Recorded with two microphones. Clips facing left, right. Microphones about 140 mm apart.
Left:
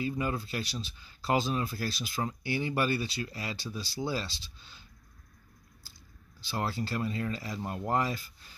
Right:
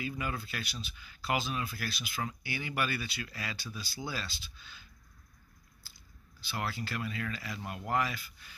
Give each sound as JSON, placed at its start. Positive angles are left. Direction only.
{"t": 0.0, "sound": "speech", "side_deg": 30}
{"t": 6.5, "sound": "speech", "side_deg": 35}